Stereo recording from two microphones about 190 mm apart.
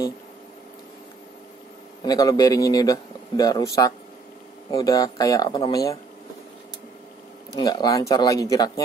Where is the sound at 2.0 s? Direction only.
20° left (ahead or behind).